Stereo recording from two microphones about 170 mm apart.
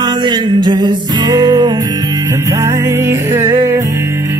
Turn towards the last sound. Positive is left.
turn(degrees=-15)  # may be behind; listen again after turning